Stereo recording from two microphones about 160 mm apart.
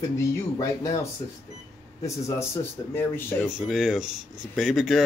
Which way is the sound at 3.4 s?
5° right (ahead or behind).